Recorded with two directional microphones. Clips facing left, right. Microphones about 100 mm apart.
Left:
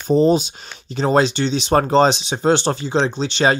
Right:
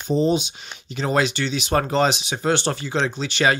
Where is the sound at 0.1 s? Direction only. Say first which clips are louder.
Left 5 dB; 40° left (ahead or behind).